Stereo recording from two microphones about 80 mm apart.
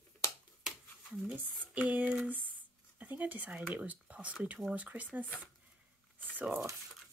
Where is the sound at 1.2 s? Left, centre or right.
Centre.